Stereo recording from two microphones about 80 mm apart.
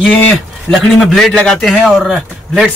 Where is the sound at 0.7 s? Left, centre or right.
Centre.